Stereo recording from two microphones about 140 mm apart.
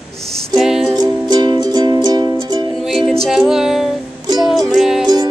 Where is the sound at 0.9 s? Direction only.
30° right (ahead or behind).